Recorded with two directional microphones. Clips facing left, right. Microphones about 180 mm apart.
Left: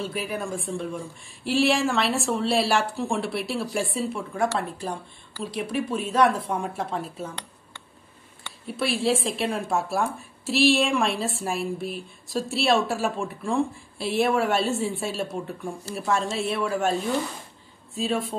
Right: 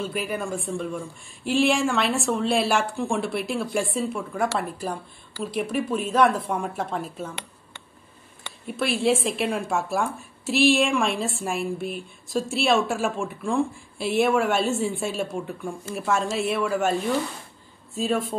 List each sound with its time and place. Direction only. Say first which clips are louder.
0.0 s speech: right 1 dB; centre (ahead or behind)
8.6 s speech: right 2 dB; centre (ahead or behind)
17.9 s speech: right 2 dB; centre (ahead or behind)